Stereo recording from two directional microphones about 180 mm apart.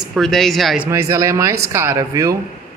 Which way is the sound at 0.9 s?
15° right (ahead or behind).